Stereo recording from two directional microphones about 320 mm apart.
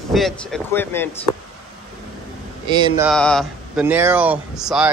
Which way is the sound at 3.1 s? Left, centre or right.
Centre.